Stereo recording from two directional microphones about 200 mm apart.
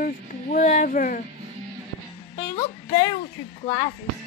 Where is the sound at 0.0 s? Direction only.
40° left (ahead or behind).